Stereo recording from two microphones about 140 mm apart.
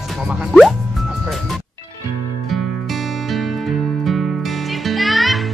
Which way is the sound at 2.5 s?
Centre (ahead or behind).